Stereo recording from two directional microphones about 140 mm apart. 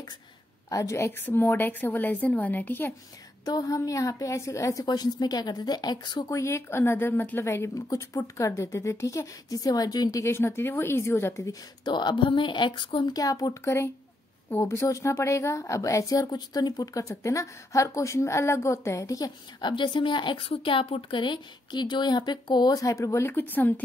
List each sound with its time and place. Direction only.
0.7 s a woman's voice: 25° left (ahead or behind)
3.4 s a woman's voice: 25° left (ahead or behind)